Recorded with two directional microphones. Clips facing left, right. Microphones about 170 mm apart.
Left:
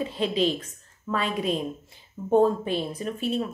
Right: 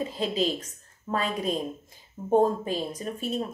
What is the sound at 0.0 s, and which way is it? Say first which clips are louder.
Speech: left 2 dB; 40° right (ahead or behind).